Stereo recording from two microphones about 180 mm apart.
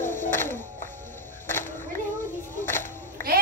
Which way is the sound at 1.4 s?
10° left (ahead or behind).